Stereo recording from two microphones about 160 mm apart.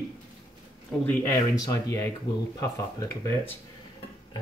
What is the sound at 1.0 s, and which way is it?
Speech, 15° left (ahead or behind).